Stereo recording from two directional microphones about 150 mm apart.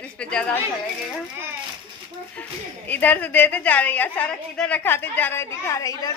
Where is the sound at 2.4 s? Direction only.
10° left (ahead or behind).